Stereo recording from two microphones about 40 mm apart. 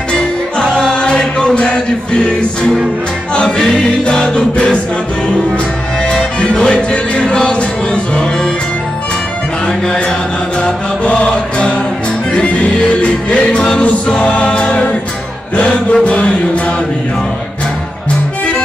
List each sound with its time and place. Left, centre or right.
1.0 s music: left
6.4 s music: left
10.6 s music: left
13.0 s music: left
15.5 s mantra: left